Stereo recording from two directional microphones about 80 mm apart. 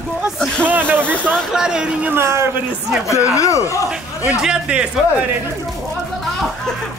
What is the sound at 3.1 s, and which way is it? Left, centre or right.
Speech, left.